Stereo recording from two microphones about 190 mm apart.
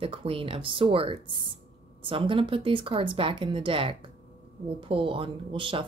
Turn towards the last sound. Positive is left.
turn(degrees=-25)  # may be behind; listen again after turning